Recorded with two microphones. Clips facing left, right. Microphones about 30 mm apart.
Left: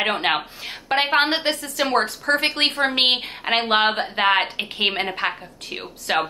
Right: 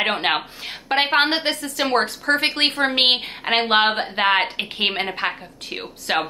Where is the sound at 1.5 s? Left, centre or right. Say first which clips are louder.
Even; centre.